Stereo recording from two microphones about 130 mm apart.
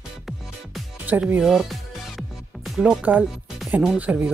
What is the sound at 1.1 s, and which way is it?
Speech, 15° right (ahead or behind).